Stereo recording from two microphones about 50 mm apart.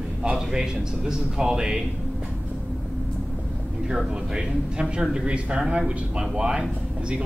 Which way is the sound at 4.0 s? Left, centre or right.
Centre.